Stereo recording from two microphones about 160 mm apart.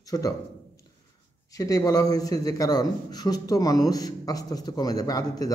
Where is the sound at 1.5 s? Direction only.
20° left (ahead or behind).